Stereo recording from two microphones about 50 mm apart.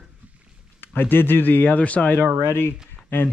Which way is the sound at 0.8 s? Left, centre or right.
Left.